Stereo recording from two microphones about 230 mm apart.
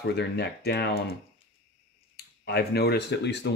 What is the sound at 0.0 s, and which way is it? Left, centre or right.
Speech, left.